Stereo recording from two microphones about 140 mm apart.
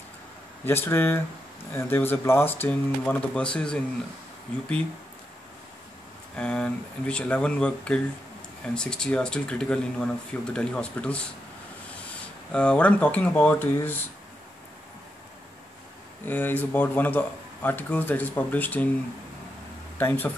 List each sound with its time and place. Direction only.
0.7 s speech: 15° left (ahead or behind)
6.3 s speech: 5° left (ahead or behind)
12.5 s speech: 10° left (ahead or behind)
16.3 s speech: 15° left (ahead or behind)
20.0 s speech: 15° left (ahead or behind)